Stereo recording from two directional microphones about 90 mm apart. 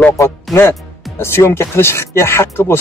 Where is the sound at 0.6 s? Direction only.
30° left (ahead or behind).